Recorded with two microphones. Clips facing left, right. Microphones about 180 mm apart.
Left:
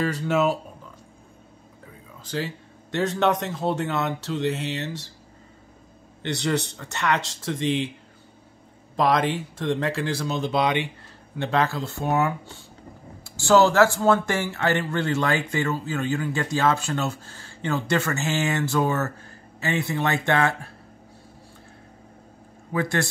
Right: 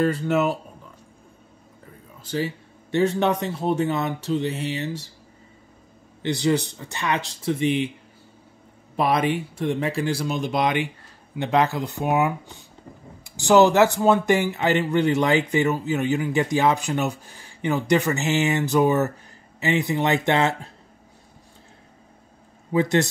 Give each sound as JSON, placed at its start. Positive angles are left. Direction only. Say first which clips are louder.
{"t": 0.0, "sound": "speech", "louder": "right 2 dB", "side_deg": 0}
{"t": 2.2, "sound": "speech", "louder": "right 3 dB", "side_deg": -10}
{"t": 3.6, "sound": "speech", "louder": "right 2 dB", "side_deg": 70}
{"t": 6.2, "sound": "speech", "louder": "right 4 dB", "side_deg": 65}
{"t": 8.9, "sound": "speech", "louder": "even", "side_deg": -10}
{"t": 22.7, "sound": "speech", "louder": "right 5 dB", "side_deg": -20}